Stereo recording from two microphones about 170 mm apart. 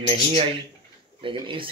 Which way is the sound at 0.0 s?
35° right (ahead or behind).